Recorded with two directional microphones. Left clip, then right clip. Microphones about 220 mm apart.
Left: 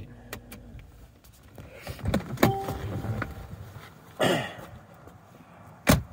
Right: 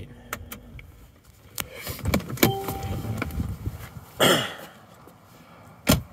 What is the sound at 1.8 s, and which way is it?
Power windows, 40° right (ahead or behind).